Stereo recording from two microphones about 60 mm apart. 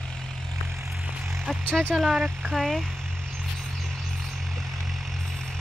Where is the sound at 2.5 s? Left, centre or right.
Centre.